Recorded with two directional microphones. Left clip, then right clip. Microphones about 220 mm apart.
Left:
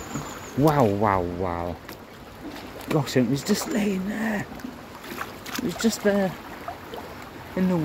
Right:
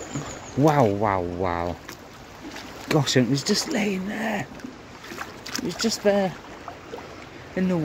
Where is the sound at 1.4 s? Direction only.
25° right (ahead or behind).